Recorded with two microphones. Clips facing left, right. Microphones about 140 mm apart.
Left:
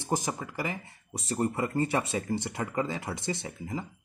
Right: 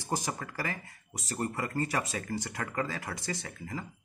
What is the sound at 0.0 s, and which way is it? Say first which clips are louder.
Speech: left 3 dB; 20° left (ahead or behind).